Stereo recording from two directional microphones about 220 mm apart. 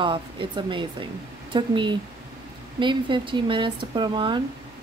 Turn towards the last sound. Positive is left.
turn(degrees=-20)  # may be behind; listen again after turning